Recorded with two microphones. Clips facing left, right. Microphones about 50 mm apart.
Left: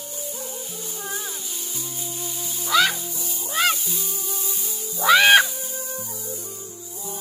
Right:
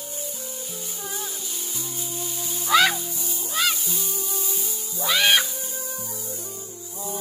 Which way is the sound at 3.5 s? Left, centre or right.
Left.